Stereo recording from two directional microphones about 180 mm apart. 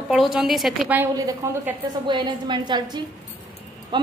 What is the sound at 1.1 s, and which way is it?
A woman's voice, 20° right (ahead or behind).